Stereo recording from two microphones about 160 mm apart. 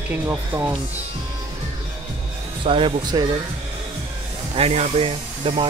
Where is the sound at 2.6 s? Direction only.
35° right (ahead or behind).